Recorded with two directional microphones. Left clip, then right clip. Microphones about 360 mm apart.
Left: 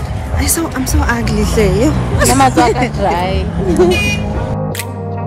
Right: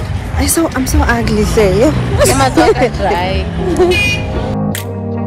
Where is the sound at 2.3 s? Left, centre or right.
Left.